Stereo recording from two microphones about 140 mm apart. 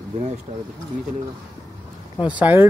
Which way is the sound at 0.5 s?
50° right (ahead or behind).